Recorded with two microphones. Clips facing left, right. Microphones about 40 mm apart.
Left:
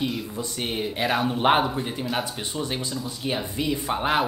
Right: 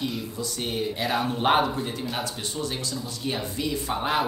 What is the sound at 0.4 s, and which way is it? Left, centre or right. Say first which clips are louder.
Speech: right 1 dB; left.